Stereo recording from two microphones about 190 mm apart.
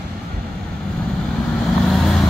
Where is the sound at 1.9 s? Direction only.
Centre (ahead or behind).